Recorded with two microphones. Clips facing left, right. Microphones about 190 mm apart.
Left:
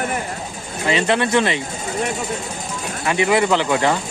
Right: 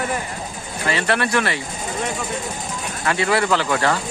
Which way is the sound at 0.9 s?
20° left (ahead or behind).